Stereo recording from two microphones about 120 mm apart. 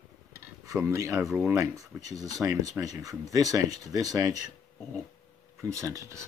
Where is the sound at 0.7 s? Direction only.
20° right (ahead or behind).